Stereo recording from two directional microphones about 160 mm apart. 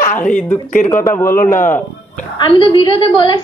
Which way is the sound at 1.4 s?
55° left (ahead or behind).